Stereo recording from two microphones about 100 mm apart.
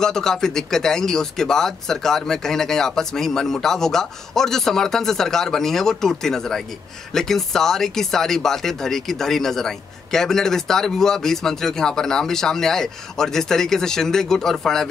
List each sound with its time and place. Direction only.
0.0 s speech: 5° left (ahead or behind)